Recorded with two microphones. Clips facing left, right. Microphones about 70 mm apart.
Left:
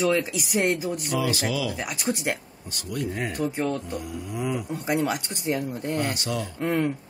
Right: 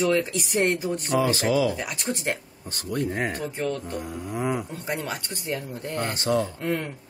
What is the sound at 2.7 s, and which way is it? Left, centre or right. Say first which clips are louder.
Speech: right 3 dB; right.